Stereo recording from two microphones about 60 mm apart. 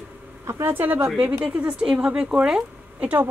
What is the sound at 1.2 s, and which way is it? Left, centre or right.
Speech, right.